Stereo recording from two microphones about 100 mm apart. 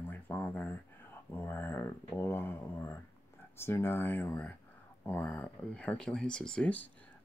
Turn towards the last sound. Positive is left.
turn(degrees=15)  # may be behind; listen again after turning